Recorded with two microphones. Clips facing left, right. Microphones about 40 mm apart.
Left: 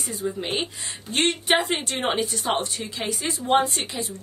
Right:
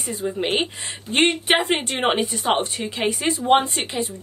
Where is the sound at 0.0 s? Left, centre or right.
Right.